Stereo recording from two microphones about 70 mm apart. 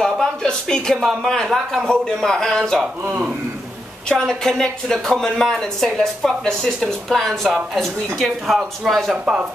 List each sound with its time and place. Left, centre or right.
0.0 s a sound: centre
0.9 s a man's voice: centre
3.0 s a man's voice: right
4.1 s speech: centre
9.2 s speech: centre